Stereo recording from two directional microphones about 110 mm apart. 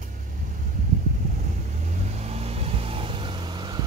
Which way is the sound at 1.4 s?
90° right.